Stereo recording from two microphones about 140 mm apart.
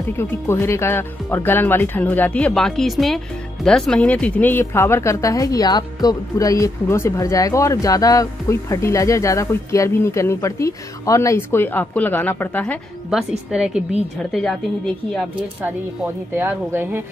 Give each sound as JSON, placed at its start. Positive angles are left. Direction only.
{"t": 0.2, "sound": "speech", "side_deg": 20}
{"t": 13.1, "sound": "a woman's voice", "side_deg": -5}
{"t": 16.3, "sound": "speech", "side_deg": -15}